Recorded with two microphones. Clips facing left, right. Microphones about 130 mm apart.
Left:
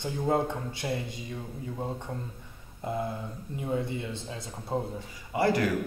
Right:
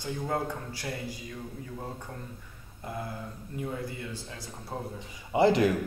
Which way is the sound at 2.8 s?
25° left (ahead or behind).